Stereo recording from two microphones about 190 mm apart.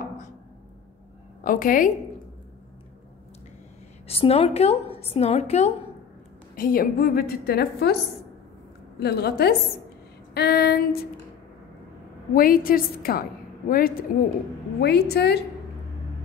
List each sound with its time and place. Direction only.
1.4 s a woman's voice: 45° left (ahead or behind)
4.2 s a woman's voice: 30° left (ahead or behind)
6.5 s a woman's voice: 50° left (ahead or behind)
9.0 s female singing: 55° left (ahead or behind)
12.4 s a woman's voice: 50° left (ahead or behind)
14.8 s female singing: 60° left (ahead or behind)